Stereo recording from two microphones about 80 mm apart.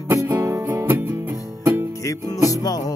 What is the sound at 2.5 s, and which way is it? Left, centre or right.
Music, left.